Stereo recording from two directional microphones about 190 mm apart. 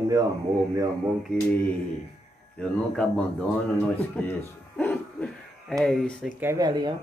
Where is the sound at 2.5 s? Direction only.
5° left (ahead or behind).